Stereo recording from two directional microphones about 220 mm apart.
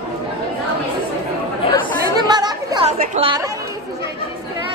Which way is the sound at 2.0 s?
20° right (ahead or behind).